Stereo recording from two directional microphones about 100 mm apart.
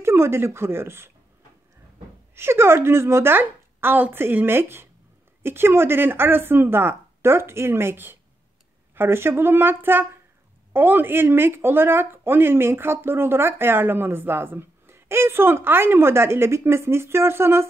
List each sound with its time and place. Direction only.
0.0 s speech: 25° right (ahead or behind)
2.3 s speech: 25° right (ahead or behind)